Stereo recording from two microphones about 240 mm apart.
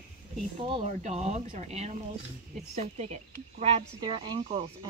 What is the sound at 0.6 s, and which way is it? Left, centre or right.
Speech, right.